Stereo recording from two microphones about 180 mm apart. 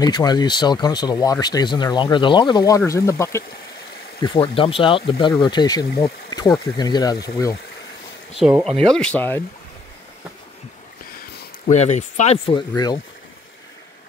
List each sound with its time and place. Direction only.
0.0 s speech: 25° left (ahead or behind)
4.2 s speech: 30° left (ahead or behind)
8.4 s speech: 5° right (ahead or behind)
11.7 s speech: 40° left (ahead or behind); by 13.0 s 25° left (ahead or behind)